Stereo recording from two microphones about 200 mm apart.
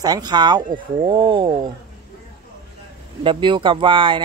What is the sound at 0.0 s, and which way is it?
Speech, 20° right (ahead or behind).